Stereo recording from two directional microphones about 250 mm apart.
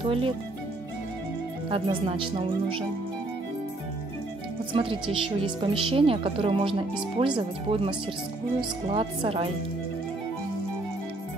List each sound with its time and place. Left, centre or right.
0.0 s a woman's voice: right
1.7 s a woman's voice: right
4.7 s a woman's voice: right